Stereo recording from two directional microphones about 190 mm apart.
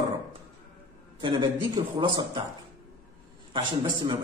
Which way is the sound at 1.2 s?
25° right (ahead or behind).